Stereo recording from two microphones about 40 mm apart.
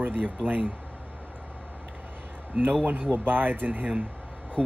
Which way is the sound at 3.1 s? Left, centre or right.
Right.